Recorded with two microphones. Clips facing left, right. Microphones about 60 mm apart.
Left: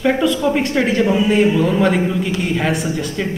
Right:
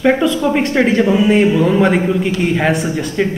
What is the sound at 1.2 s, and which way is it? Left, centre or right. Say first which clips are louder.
A man's voice: right 3 dB; centre.